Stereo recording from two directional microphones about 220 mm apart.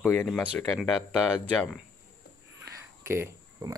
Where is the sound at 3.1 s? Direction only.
10° right (ahead or behind).